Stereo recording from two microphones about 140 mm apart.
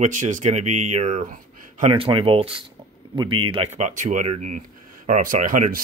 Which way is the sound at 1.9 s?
40° right (ahead or behind).